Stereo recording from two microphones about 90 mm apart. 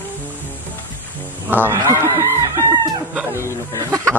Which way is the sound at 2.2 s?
35° right (ahead or behind).